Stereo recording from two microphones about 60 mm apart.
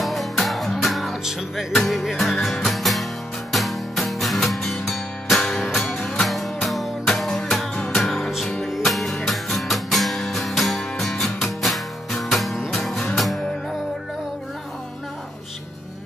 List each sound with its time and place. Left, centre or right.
0.0 s music: centre